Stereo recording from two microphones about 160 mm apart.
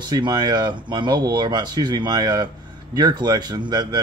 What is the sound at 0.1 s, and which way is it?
Speech, 25° right (ahead or behind).